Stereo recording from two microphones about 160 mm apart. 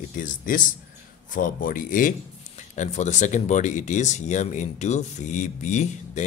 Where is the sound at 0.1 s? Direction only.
55° left (ahead or behind).